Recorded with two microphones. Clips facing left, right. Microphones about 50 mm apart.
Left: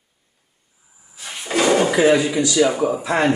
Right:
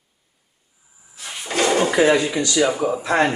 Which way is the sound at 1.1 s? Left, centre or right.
Centre.